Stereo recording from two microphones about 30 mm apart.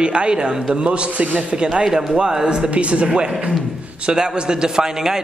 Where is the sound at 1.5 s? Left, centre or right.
Right.